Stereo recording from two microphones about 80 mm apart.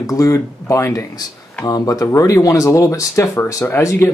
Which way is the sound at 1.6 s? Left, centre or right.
Left.